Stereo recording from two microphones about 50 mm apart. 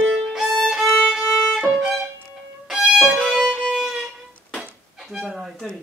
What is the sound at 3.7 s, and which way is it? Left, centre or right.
Music, centre.